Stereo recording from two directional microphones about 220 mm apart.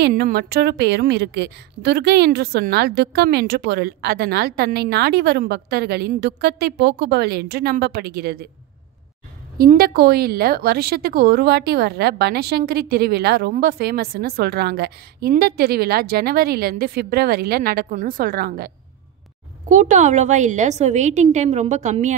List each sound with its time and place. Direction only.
0.0 s speech: 45° right (ahead or behind)
9.6 s speech: 45° right (ahead or behind)
19.7 s a woman's voice: 35° right (ahead or behind)